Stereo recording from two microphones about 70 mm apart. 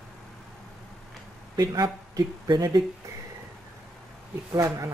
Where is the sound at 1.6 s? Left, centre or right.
Right.